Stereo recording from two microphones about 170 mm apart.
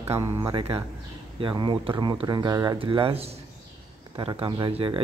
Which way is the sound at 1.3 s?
30° right (ahead or behind).